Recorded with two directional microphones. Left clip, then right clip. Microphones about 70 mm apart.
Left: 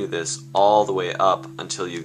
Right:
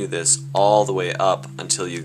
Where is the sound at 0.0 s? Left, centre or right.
Right.